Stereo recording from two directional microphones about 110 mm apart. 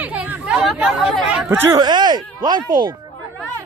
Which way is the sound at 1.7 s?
40° right (ahead or behind).